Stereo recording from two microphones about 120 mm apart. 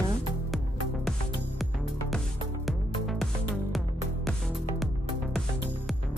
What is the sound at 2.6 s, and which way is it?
Music, centre (ahead or behind).